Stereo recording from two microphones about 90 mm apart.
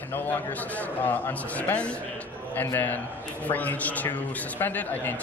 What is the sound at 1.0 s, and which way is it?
A man's voice, 20° left (ahead or behind).